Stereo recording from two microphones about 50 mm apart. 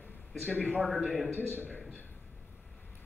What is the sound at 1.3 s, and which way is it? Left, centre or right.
Speech, left.